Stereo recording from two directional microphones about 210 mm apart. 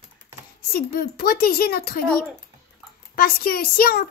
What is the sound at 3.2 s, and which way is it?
Speech, 45° left (ahead or behind).